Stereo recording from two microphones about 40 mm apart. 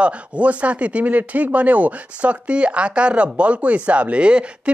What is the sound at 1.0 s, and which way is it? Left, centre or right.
Speech, right.